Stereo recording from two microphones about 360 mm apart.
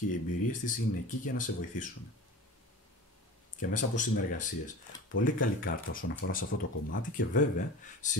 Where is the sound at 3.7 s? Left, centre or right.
Left.